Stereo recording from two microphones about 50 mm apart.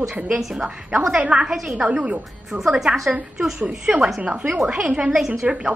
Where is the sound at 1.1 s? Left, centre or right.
Centre.